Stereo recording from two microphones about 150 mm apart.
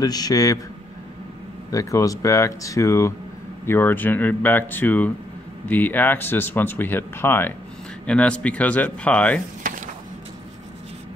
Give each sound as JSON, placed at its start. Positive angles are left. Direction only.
{"t": 0.0, "sound": "speech", "side_deg": 25}
{"t": 1.7, "sound": "speech", "side_deg": 20}
{"t": 9.6, "sound": "a sound", "side_deg": -60}